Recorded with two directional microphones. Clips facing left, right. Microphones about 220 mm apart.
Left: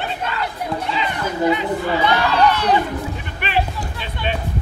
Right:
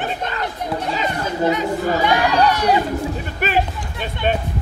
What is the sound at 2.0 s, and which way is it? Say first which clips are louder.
Speech: even; 15° right (ahead or behind).